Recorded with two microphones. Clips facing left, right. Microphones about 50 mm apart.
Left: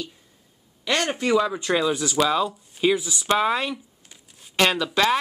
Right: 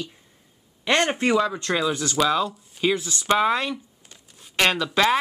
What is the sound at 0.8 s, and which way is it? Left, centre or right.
Speech, right.